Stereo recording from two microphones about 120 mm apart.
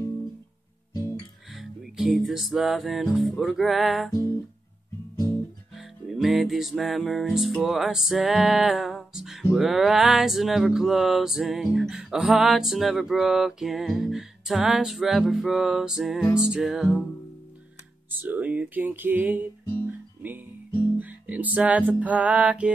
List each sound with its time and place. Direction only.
0.9 s music: 35° left (ahead or behind)
1.5 s a sound: centre (ahead or behind)
5.8 s music: centre (ahead or behind)
9.5 s a sound: centre (ahead or behind)
18.2 s speech: 15° right (ahead or behind)
19.9 s guitar: 15° right (ahead or behind)
21.0 s music: 10° right (ahead or behind)